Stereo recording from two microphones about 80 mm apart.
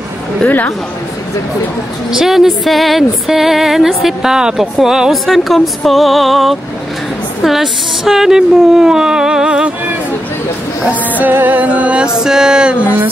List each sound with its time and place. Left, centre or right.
2.0 s speech: centre
10.9 s speech: right